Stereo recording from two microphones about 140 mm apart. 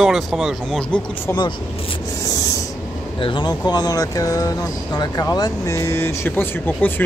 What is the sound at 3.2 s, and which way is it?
A man's voice, 35° left (ahead or behind).